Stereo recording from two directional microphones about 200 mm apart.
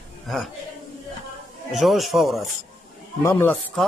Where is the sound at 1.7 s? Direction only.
Centre (ahead or behind).